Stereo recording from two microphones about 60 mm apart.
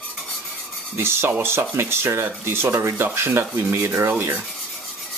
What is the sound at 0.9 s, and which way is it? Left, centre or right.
Speech, right.